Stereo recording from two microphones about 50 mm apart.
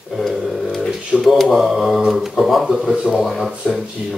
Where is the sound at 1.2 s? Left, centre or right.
Centre.